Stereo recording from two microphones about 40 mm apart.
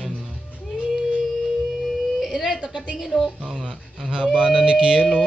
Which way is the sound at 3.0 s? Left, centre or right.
Centre.